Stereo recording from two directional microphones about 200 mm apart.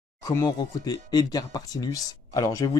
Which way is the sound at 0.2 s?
20° left (ahead or behind).